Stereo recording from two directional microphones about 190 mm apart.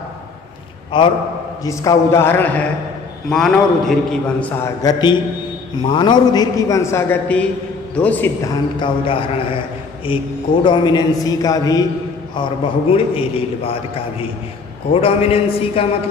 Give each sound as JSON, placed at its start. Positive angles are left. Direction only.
{"t": 0.9, "sound": "a man's voice", "side_deg": 25}
{"t": 5.8, "sound": "a man's voice", "side_deg": 25}
{"t": 8.7, "sound": "a man's voice", "side_deg": 25}
{"t": 14.9, "sound": "a man's voice", "side_deg": 30}